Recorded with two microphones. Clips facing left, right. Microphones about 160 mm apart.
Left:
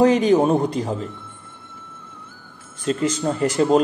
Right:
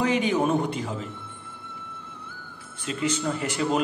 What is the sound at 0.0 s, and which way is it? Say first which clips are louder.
Speech: left 8 dB; 40° left (ahead or behind).